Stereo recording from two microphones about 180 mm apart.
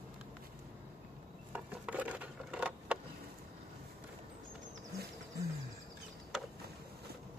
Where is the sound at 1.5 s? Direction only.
10° right (ahead or behind).